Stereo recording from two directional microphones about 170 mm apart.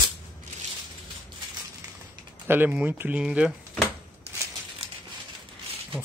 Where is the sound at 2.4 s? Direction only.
10° right (ahead or behind).